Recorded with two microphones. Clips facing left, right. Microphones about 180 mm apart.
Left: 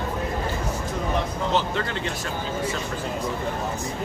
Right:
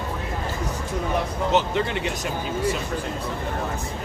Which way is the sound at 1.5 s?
15° right (ahead or behind).